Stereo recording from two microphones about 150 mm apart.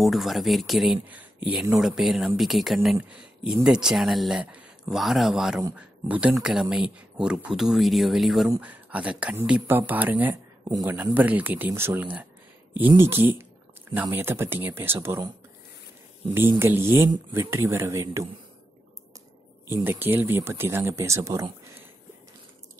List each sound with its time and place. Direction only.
0.0 s speech: centre (ahead or behind)
10.6 s speech: 25° right (ahead or behind)
11.1 s speech: 10° right (ahead or behind)
16.3 s speech: 15° right (ahead or behind)
19.7 s speech: 15° right (ahead or behind)